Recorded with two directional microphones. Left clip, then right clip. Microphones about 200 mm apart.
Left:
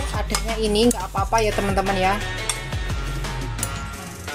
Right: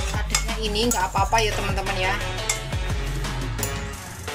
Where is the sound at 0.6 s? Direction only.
20° left (ahead or behind).